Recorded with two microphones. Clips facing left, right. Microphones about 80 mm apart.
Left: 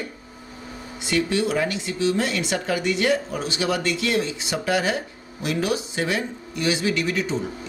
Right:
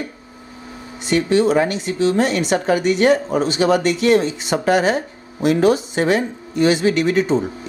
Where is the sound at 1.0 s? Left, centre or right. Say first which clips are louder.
Right 7 dB; right.